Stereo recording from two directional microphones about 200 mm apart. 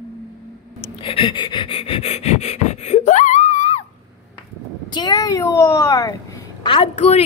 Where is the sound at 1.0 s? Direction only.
25° left (ahead or behind).